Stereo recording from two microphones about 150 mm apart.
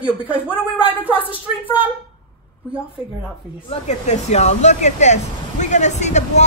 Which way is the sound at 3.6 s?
50° left (ahead or behind).